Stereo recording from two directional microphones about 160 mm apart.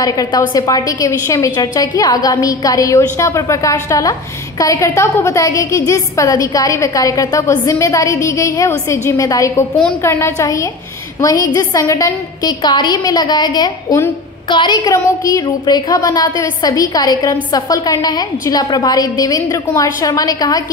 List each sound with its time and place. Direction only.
0.0 s a woman's voice: 20° left (ahead or behind)